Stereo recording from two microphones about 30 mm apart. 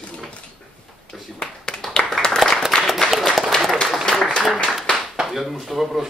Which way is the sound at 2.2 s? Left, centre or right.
Centre.